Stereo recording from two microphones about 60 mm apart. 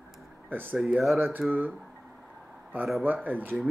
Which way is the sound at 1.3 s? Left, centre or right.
Right.